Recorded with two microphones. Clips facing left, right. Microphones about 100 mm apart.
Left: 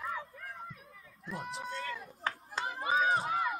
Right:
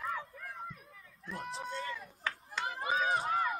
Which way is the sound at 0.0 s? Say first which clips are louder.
Even; centre (ahead or behind).